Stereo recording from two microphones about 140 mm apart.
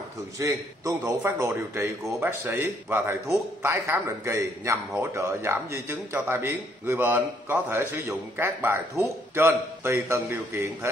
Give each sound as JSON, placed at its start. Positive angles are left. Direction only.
{"t": 0.4, "sound": "a man's voice", "side_deg": -25}